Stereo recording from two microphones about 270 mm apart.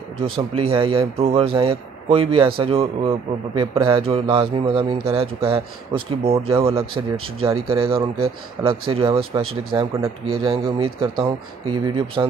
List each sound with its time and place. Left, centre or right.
0.6 s a man's voice: centre